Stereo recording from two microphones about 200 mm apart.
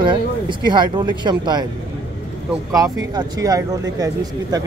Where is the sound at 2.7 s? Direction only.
20° right (ahead or behind).